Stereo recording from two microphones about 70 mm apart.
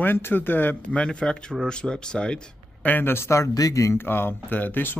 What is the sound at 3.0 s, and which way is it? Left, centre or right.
Speech, left.